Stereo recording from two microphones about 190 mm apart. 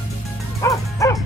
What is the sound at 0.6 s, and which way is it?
Music, 15° left (ahead or behind).